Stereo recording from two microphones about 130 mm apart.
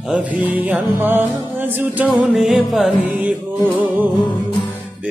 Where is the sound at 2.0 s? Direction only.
Centre (ahead or behind).